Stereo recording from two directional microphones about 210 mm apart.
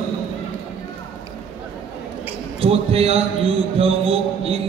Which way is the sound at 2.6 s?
30° right (ahead or behind).